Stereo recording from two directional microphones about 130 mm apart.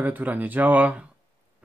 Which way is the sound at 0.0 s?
15° right (ahead or behind).